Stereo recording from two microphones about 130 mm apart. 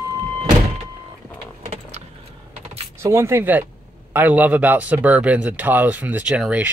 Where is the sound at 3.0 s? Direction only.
20° right (ahead or behind).